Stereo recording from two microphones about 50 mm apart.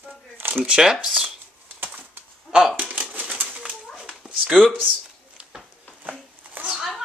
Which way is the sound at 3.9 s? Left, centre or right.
Centre.